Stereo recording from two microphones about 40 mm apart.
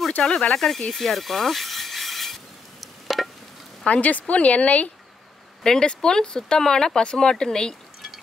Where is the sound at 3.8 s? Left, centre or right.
Left.